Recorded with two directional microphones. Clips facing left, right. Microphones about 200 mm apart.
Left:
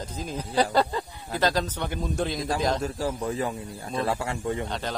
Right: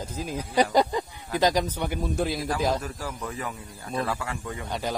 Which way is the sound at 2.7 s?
30° left (ahead or behind).